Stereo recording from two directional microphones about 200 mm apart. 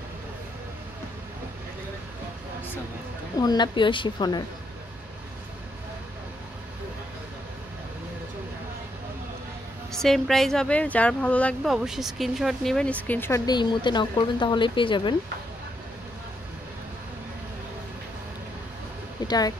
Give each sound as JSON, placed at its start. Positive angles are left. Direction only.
{"t": 3.3, "sound": "a woman's voice", "side_deg": 20}
{"t": 9.9, "sound": "a woman's voice", "side_deg": 0}
{"t": 19.2, "sound": "speech", "side_deg": 20}